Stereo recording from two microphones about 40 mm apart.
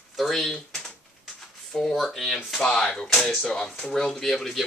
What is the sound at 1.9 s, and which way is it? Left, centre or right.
Speech, centre.